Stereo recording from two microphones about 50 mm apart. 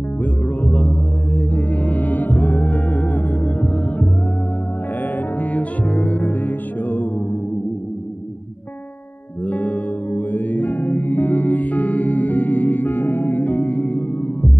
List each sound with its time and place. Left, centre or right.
0.2 s music: left
5.4 s music: left
9.5 s music: left